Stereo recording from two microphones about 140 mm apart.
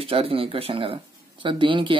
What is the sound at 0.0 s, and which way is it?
Speech, 45° right (ahead or behind).